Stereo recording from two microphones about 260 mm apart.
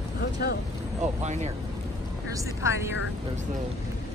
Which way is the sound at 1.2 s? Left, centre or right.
Right.